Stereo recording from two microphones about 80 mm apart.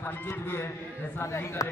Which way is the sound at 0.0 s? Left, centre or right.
Left.